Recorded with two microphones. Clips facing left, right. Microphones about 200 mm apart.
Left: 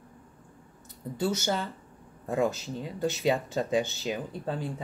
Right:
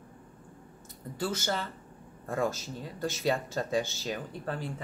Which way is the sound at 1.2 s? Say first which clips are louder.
Left 4 dB; 15° left (ahead or behind).